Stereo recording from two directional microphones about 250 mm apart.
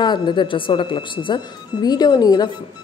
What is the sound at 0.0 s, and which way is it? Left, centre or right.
Speech, centre.